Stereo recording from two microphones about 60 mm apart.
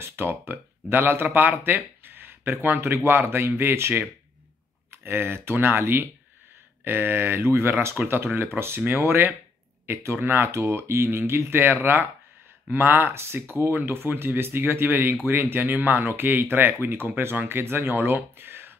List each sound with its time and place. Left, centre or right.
0.0 s speech: right